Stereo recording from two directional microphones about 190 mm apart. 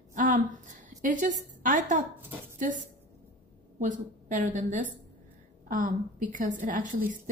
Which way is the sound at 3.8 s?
40° right (ahead or behind).